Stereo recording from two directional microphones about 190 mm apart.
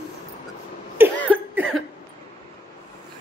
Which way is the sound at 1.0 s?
10° right (ahead or behind).